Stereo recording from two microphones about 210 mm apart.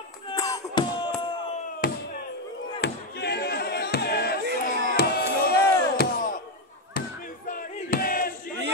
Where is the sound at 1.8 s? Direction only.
45° left (ahead or behind).